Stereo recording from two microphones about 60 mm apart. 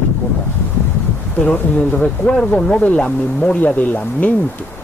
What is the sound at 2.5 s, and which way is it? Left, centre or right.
Speech, left.